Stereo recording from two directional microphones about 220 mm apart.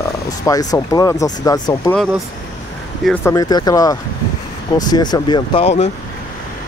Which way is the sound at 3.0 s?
10° left (ahead or behind).